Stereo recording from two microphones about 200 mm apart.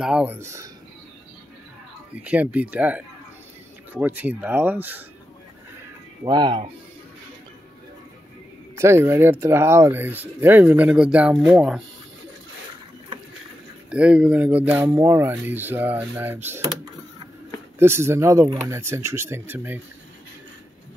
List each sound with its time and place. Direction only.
0.0 s speech: 5° right (ahead or behind)
2.2 s speech: 5° right (ahead or behind)
6.2 s speech: 20° right (ahead or behind)
8.7 s speech: 10° right (ahead or behind)
13.8 s speech: 5° right (ahead or behind)
17.7 s speech: 10° right (ahead or behind)